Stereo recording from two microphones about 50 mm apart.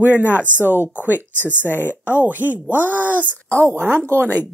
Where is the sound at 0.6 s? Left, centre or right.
Right.